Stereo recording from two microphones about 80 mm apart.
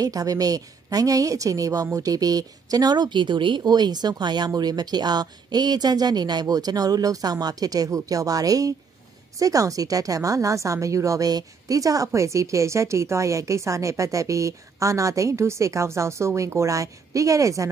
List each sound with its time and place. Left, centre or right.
0.0 s a woman's voice: right